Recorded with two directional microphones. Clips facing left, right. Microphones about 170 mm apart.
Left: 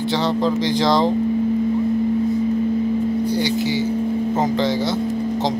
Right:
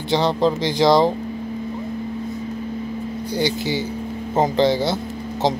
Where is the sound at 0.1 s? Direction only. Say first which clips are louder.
Right 3 dB; 20° right (ahead or behind).